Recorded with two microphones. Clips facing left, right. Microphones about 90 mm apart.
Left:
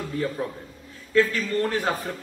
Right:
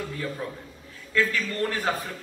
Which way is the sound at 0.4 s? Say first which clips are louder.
Left 4 dB; 25° left (ahead or behind).